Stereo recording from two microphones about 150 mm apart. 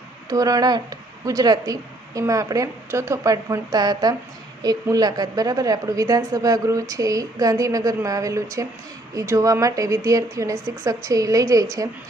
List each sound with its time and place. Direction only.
0.3 s a woman's voice: 25° right (ahead or behind)